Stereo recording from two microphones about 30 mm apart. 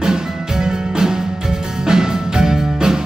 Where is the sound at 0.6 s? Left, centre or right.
Right.